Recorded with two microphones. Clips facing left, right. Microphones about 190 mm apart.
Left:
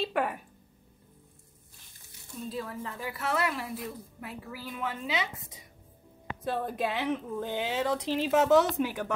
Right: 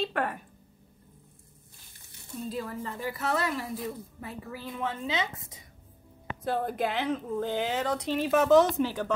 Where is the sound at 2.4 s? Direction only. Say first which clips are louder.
Right 1 dB; centre (ahead or behind).